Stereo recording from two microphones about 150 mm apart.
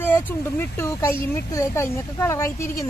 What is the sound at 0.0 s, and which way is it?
Speech, 10° left (ahead or behind).